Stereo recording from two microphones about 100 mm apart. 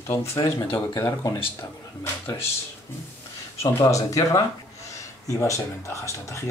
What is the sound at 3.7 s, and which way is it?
Speech, 35° left (ahead or behind).